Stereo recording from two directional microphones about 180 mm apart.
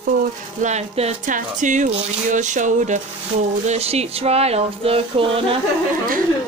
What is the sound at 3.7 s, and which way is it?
Frying, 35° right (ahead or behind).